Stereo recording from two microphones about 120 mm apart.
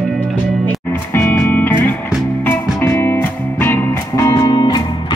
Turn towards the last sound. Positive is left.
turn(degrees=35)  # may be behind; listen again after turning